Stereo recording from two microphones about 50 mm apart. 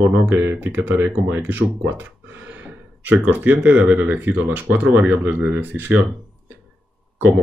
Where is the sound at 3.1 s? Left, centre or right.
Right.